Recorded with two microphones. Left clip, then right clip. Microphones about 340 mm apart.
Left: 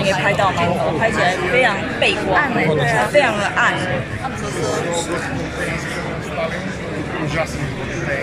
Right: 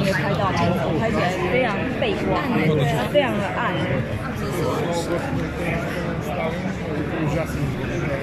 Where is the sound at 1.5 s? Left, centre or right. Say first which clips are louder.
Left 6 dB; left.